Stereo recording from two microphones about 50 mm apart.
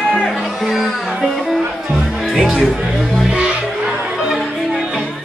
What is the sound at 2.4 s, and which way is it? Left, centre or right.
Speech, centre.